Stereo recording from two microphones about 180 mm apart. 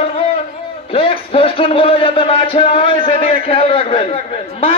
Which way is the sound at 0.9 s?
30° left (ahead or behind).